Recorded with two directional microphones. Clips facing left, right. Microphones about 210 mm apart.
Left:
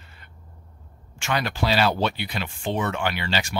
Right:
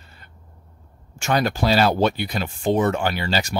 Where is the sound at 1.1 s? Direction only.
40° right (ahead or behind).